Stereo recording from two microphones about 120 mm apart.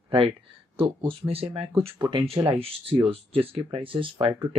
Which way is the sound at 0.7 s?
45° right (ahead or behind).